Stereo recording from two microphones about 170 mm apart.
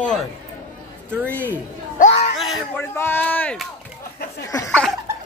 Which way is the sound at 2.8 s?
10° left (ahead or behind).